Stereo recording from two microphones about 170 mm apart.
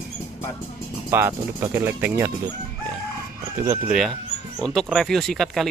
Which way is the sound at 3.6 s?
15° right (ahead or behind).